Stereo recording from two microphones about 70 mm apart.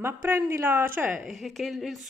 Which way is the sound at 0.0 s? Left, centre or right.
Right.